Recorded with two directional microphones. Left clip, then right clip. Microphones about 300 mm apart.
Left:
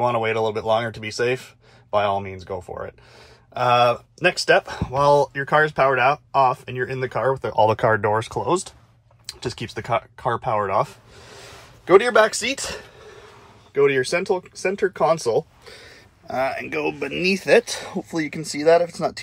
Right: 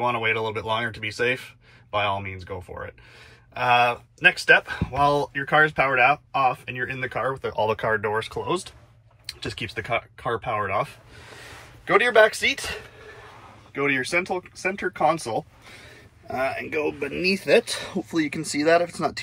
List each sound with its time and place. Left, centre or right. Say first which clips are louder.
0.0 s speech: left 3 dB; centre
16.3 s speech: left 3 dB; left
17.2 s speech: left 3 dB; centre
18.3 s speech: left 4 dB; centre